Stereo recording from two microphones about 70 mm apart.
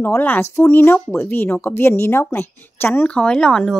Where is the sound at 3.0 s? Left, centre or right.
Centre.